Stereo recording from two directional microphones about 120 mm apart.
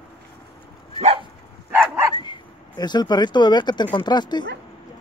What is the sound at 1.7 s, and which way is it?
Dog, 15° right (ahead or behind).